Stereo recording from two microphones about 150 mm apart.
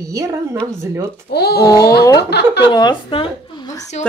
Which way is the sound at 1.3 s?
90° left.